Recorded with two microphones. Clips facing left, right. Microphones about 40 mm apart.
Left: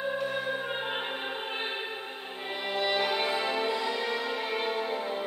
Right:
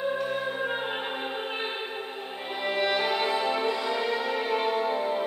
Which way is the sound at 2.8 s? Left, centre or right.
Centre.